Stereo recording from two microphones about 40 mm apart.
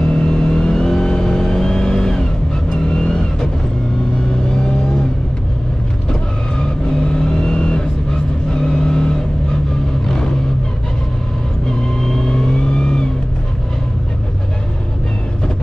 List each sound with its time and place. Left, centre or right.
0.0 s vehicle: left
6.6 s vehicle: centre
12.0 s vehicle: centre